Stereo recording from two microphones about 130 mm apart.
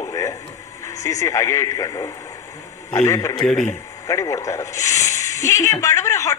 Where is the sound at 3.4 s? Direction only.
5° left (ahead or behind).